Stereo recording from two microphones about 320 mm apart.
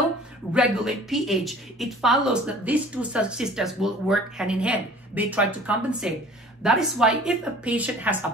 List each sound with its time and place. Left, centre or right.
0.5 s a woman's voice: centre